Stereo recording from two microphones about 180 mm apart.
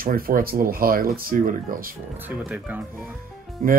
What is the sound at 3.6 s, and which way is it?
Speech, 50° right (ahead or behind).